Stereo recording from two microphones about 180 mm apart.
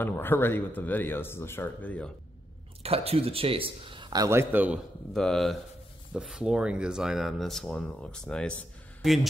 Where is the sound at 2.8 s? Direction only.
35° right (ahead or behind); by 4.8 s 10° right (ahead or behind).